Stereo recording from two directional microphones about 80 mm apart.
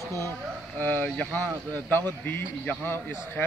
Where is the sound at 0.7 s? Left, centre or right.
Left.